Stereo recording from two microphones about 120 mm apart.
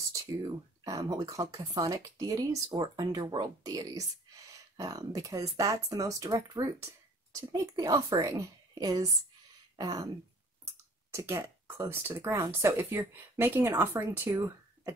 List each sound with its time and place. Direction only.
0.8 s speech: 30° right (ahead or behind)
11.1 s speech: 20° right (ahead or behind)
14.3 s a sound: 25° right (ahead or behind)